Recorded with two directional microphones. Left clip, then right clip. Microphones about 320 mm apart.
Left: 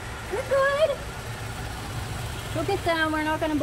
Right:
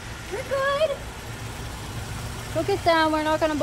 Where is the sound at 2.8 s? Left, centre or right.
Right.